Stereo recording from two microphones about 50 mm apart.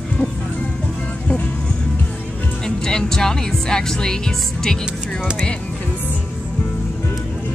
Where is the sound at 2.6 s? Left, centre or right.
Centre.